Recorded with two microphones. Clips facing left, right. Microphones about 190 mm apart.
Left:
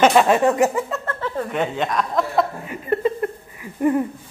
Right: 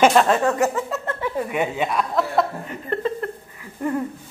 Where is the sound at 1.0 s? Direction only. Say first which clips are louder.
Right 1 dB; 10° right (ahead or behind).